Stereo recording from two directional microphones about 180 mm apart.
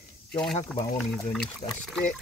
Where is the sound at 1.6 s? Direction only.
35° left (ahead or behind).